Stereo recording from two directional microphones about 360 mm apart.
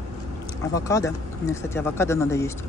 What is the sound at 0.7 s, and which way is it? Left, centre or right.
Speech, centre.